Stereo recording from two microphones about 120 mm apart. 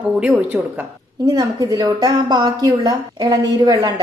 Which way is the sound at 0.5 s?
30° right (ahead or behind).